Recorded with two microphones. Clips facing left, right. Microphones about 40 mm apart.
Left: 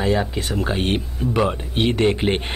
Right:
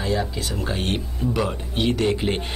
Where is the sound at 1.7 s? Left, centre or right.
Left.